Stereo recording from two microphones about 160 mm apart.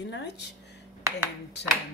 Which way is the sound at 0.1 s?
90° left.